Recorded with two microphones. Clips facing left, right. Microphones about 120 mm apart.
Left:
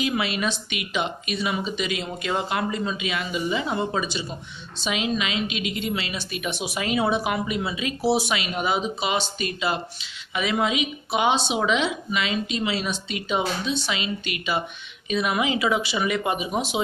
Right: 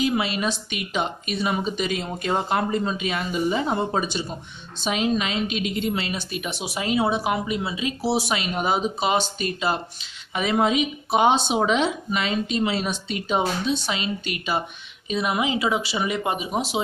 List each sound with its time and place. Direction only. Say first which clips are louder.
0.0 s speech: right 2 dB; 35° right (ahead or behind)